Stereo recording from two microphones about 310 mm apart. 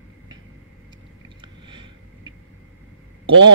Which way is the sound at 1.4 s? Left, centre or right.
Centre.